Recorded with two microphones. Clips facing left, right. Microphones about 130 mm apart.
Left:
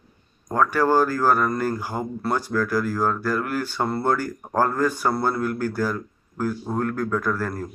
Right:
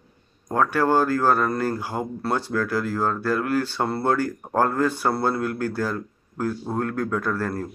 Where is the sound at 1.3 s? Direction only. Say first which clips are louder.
Even; 30° right (ahead or behind).